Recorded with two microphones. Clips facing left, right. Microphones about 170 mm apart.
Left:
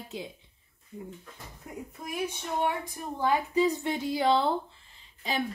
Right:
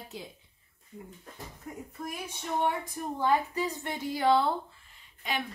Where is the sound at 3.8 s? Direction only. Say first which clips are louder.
Left 2 dB; 15° left (ahead or behind).